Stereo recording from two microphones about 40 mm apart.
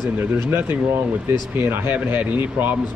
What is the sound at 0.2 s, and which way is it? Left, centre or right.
Speech, right.